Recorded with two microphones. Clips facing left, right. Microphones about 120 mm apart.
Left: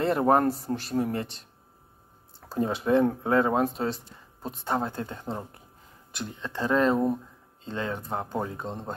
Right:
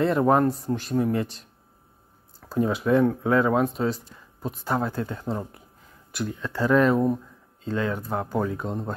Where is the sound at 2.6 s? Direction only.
30° left (ahead or behind).